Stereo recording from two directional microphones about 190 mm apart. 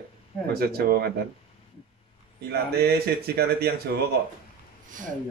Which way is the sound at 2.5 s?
55° right (ahead or behind).